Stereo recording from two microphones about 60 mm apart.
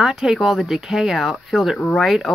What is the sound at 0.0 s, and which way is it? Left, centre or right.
Speech, centre.